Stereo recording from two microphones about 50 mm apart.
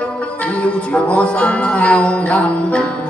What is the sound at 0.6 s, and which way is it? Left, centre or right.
Music, left.